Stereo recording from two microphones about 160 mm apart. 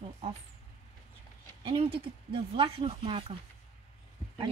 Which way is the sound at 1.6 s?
35° right (ahead or behind).